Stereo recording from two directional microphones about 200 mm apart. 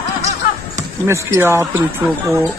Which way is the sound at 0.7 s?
15° right (ahead or behind).